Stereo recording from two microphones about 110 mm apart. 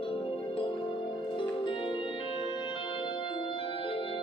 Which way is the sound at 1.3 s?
50° left (ahead or behind).